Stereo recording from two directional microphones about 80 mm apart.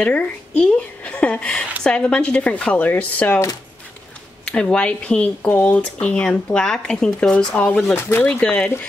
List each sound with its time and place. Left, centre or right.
0.0 s speech: centre
4.5 s speech: centre
7.9 s speech: left
8.2 s speech: centre